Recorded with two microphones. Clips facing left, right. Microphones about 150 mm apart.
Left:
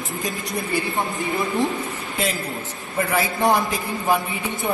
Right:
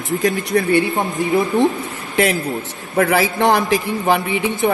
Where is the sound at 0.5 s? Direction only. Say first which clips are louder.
Right 12 dB; 90° right.